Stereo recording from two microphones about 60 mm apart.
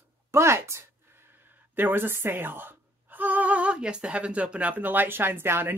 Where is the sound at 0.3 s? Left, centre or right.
Right.